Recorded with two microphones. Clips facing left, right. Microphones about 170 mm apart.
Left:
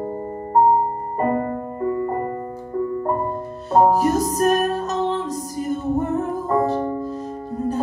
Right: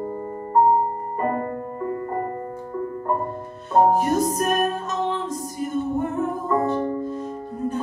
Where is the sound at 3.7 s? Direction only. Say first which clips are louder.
Left 2 dB; 35° left (ahead or behind).